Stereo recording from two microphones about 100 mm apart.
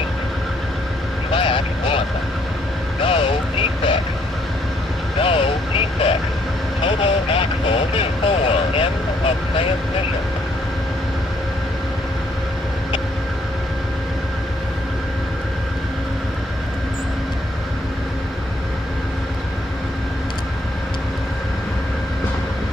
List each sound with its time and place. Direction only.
1.3 s vehicle: 60° left (ahead or behind)
5.2 s vehicle: 70° left (ahead or behind)